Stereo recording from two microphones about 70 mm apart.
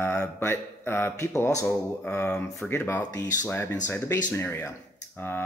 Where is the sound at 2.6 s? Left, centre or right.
Left.